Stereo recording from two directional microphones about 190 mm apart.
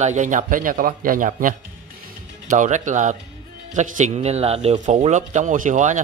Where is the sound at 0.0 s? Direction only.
40° right (ahead or behind).